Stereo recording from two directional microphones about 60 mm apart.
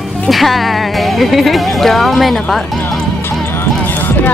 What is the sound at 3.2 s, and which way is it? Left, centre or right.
Music, left.